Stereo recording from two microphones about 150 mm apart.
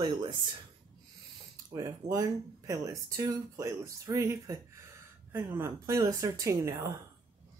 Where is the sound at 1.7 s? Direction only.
25° right (ahead or behind).